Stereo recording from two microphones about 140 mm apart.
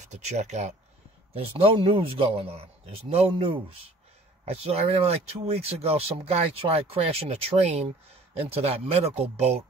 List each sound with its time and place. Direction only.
0.1 s speech: 55° right (ahead or behind)
1.3 s speech: 40° right (ahead or behind)